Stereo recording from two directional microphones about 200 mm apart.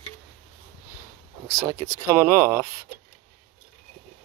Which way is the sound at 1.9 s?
15° right (ahead or behind).